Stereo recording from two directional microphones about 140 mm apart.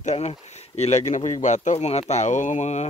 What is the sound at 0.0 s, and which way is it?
Speech, 50° left (ahead or behind).